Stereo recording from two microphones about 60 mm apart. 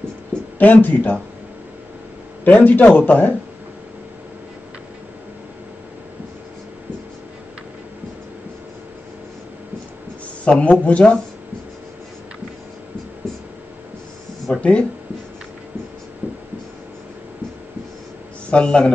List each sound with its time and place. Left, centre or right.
0.6 s a man's voice: left
2.4 s a man's voice: left
10.4 s a man's voice: left
14.6 s speech: left
18.5 s a man's voice: centre